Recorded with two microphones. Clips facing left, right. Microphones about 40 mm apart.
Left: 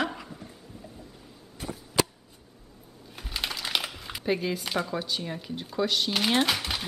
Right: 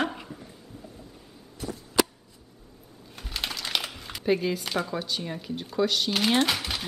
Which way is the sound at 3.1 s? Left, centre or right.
Centre.